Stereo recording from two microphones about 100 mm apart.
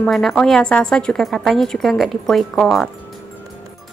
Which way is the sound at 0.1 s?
Centre (ahead or behind).